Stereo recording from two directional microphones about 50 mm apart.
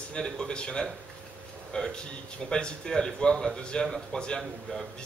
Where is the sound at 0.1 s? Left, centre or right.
Centre.